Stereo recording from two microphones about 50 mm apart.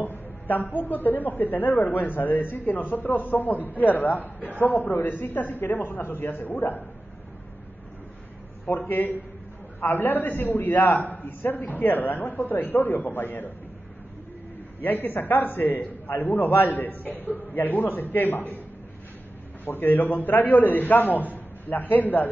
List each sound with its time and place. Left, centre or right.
0.0 s a man's voice: left
8.6 s a man's voice: left
14.8 s a man's voice: left
19.6 s a man's voice: left